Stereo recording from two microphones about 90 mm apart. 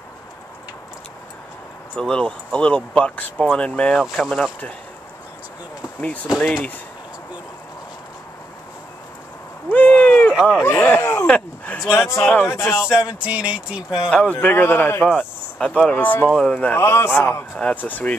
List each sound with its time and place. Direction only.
2.0 s speech: 10° left (ahead or behind)
5.9 s speech: 15° left (ahead or behind)
9.7 s a sound: 20° left (ahead or behind)
10.6 s speech: 20° left (ahead or behind)
11.2 s a sound: 15° left (ahead or behind)
11.9 s speech: 30° left (ahead or behind)
12.9 s speech: 10° right (ahead or behind)
14.1 s speech: 15° left (ahead or behind)
16.7 s speech: 30° left (ahead or behind)